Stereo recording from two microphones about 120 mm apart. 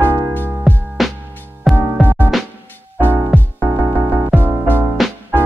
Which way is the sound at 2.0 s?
15° left (ahead or behind).